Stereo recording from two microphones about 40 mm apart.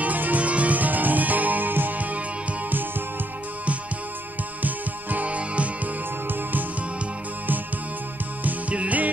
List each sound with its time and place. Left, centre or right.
0.0 s music: right
4.6 s music: right
8.5 s music: right